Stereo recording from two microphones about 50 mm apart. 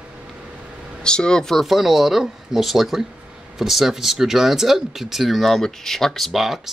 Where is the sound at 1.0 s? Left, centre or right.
Centre.